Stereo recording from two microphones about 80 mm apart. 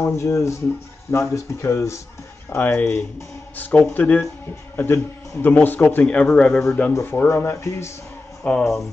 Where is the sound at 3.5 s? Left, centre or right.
Centre.